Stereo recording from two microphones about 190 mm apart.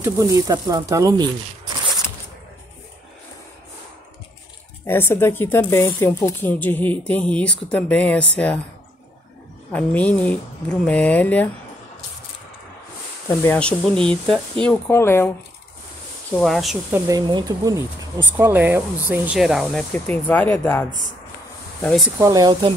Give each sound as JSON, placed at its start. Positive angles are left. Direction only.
{"t": 0.0, "sound": "speech", "side_deg": -15}
{"t": 4.8, "sound": "speech", "side_deg": 10}
{"t": 9.7, "sound": "speech", "side_deg": 5}
{"t": 13.3, "sound": "speech", "side_deg": 15}
{"t": 16.3, "sound": "speech", "side_deg": 0}
{"t": 16.9, "sound": "speech", "side_deg": -20}
{"t": 22.2, "sound": "speech", "side_deg": -20}